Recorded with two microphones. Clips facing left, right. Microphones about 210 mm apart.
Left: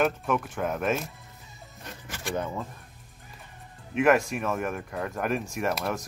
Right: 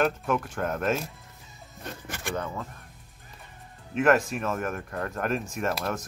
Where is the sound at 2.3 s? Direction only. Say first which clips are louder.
Left 2 dB; 20° left (ahead or behind).